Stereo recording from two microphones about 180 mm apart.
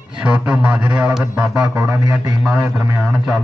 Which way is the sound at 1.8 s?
20° right (ahead or behind).